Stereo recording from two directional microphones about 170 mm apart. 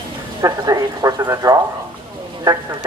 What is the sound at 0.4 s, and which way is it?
Speech, 20° right (ahead or behind).